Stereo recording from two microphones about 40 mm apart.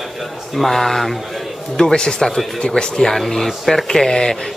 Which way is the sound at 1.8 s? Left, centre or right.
Centre.